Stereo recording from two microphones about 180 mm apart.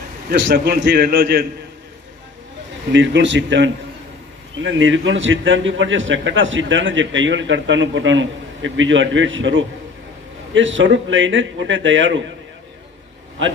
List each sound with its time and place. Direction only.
0.5 s a man's voice: 55° right (ahead or behind)
2.9 s a man's voice: 90° right